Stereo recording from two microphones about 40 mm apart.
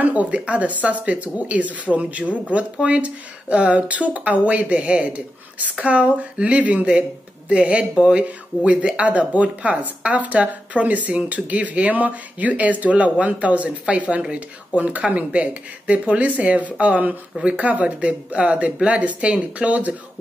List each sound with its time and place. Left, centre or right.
0.0 s speech: right